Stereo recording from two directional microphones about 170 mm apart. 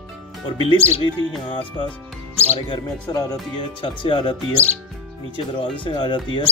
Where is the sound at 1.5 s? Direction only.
30° left (ahead or behind).